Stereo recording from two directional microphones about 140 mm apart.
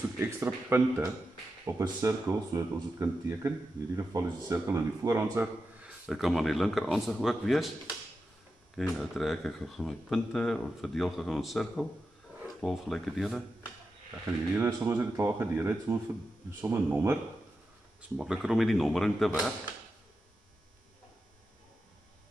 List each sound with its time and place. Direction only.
0.2 s speech: 15° right (ahead or behind); by 7.6 s centre (ahead or behind)
8.7 s speech: centre (ahead or behind)
14.6 s speech: 15° right (ahead or behind)
18.1 s speech: 5° right (ahead or behind)